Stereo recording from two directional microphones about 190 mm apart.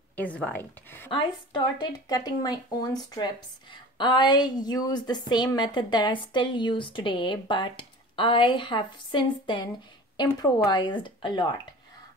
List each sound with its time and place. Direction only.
0.1 s a woman's voice: 10° left (ahead or behind)
1.1 s a woman's voice: 25° left (ahead or behind)